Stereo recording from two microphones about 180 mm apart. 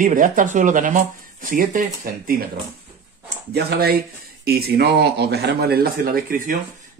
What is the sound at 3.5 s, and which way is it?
Speech, 60° right (ahead or behind).